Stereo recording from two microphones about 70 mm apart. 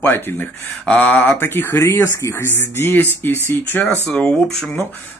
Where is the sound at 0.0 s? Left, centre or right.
Left.